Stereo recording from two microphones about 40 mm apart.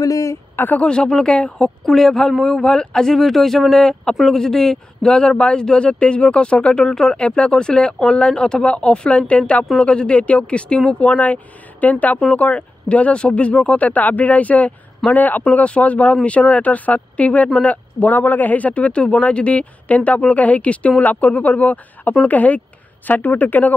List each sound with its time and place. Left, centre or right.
0.7 s speech: left
1.9 s speech: centre
2.6 s speech: centre
3.2 s speech: centre; by 6.8 s left
6.8 s speech: centre
7.2 s a woman's voice: left
15.5 s a woman's voice: left